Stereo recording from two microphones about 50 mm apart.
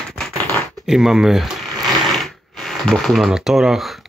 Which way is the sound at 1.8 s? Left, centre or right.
Centre.